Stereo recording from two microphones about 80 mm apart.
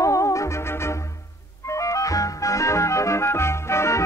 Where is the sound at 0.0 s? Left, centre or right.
Left.